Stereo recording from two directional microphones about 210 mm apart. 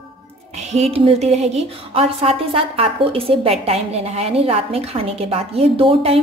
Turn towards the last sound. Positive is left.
turn(degrees=-25)  # may be behind; listen again after turning